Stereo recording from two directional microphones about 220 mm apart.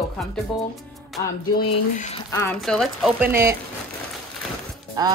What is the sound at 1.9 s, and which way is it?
Speech, 35° left (ahead or behind).